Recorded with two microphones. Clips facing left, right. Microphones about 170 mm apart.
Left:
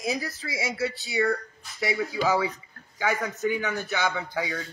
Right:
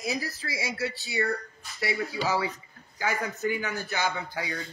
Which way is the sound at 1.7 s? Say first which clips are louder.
Left 3 dB; 20° left (ahead or behind).